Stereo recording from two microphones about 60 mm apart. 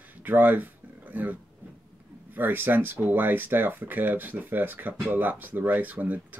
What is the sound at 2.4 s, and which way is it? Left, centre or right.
Speech, right.